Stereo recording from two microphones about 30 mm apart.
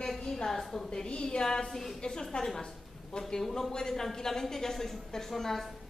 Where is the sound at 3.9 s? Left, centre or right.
Centre.